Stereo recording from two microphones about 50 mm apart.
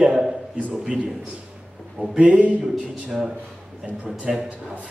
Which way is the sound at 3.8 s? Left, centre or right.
Right.